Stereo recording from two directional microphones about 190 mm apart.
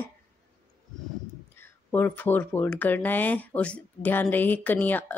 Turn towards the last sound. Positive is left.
turn(degrees=10)  # may be behind; listen again after turning